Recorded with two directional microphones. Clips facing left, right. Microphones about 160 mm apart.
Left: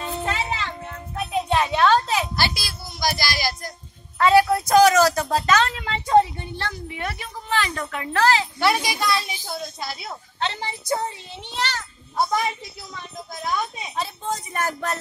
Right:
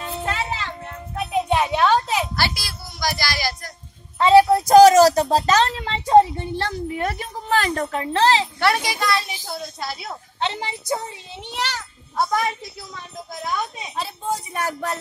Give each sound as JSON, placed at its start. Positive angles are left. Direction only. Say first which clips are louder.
{"t": 0.0, "sound": "music", "louder": "even", "side_deg": 0}
{"t": 2.3, "sound": "music", "louder": "even", "side_deg": 15}
{"t": 4.2, "sound": "a woman's voice", "louder": "right 3 dB", "side_deg": -25}
{"t": 8.5, "sound": "a woman's voice", "louder": "right 1 dB", "side_deg": 0}
{"t": 10.4, "sound": "a woman's voice", "louder": "right 2 dB", "side_deg": -15}
{"t": 13.9, "sound": "a woman's voice", "louder": "right 1 dB", "side_deg": -5}